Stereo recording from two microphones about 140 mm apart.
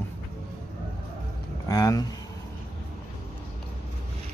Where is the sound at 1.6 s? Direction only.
25° left (ahead or behind).